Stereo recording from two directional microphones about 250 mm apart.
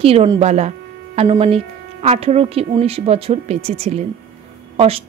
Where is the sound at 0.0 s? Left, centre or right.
Right.